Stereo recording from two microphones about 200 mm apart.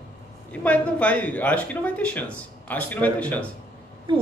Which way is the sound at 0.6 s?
5° left (ahead or behind).